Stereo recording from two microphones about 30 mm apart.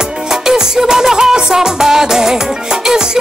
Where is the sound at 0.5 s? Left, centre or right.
Centre.